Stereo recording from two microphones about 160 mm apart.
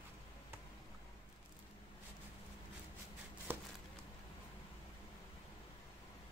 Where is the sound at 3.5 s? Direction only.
15° right (ahead or behind).